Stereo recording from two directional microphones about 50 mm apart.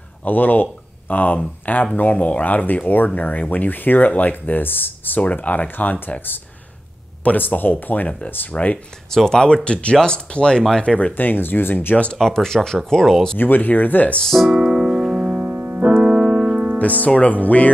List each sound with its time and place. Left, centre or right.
0.2 s speech: left
9.1 s speech: centre
11.0 s speech: left
12.2 s speech: centre
13.4 s speech: left
14.2 s speech: centre
14.5 s music: centre
15.4 s piano: right
16.0 s music: centre
16.7 s speech: left